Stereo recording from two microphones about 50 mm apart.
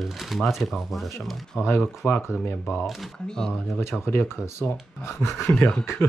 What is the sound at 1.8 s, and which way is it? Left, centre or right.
Speech, left.